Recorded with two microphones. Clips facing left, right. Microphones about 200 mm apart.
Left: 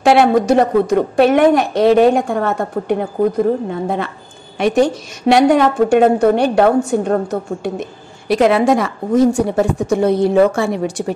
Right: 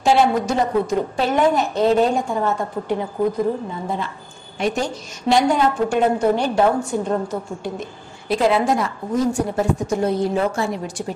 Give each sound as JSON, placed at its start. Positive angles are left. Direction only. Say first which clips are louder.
{"t": 0.0, "sound": "a woman's voice", "louder": "left 5 dB", "side_deg": 70}